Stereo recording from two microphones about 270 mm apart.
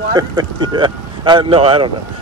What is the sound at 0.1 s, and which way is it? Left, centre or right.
Speech, centre.